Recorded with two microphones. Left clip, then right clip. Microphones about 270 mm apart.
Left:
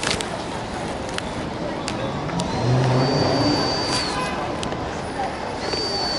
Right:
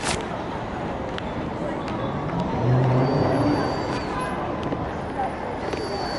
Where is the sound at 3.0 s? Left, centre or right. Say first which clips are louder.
Left 2 dB; centre.